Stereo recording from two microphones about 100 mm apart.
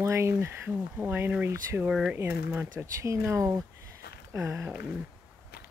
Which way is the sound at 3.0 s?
30° right (ahead or behind).